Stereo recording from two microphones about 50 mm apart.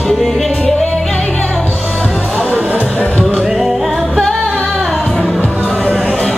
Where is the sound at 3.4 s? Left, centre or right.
Centre.